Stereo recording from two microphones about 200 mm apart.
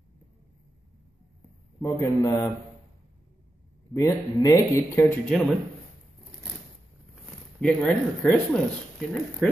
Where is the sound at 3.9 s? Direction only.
15° left (ahead or behind).